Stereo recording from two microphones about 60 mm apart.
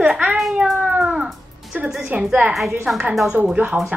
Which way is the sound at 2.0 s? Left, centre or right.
Right.